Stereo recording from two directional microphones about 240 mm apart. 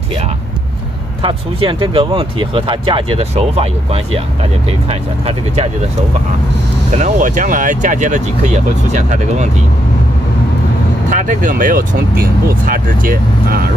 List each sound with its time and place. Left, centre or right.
1.2 s speech: right
6.9 s speech: right
11.1 s speech: right